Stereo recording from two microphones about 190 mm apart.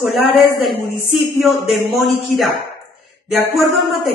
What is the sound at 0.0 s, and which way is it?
Speech, centre (ahead or behind).